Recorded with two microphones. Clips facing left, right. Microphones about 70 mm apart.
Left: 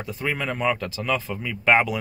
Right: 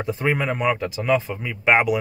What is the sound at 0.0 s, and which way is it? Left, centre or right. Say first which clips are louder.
Speech: right 5 dB; right.